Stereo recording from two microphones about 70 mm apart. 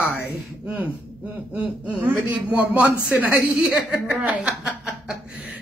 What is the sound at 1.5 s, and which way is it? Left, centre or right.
A man's voice, right.